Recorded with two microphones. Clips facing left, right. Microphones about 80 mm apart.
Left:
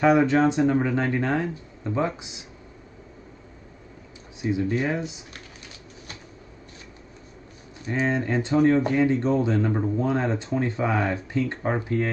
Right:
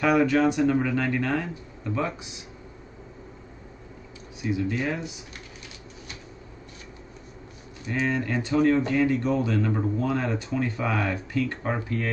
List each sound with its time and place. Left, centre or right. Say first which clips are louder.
0.0 s speech: left 2 dB; left
4.4 s speech: left 3 dB; left
7.9 s speech: left 2 dB; left